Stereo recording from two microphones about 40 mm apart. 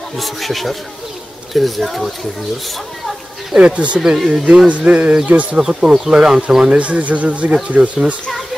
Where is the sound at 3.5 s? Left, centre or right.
Right.